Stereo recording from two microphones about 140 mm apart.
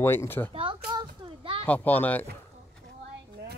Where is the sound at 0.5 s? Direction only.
35° right (ahead or behind).